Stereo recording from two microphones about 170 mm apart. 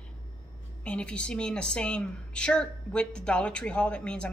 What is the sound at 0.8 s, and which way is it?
A woman's voice, 5° left (ahead or behind).